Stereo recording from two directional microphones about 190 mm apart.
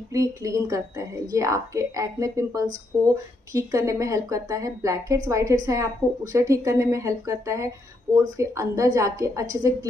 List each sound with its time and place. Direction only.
0.1 s a woman's voice: 15° right (ahead or behind)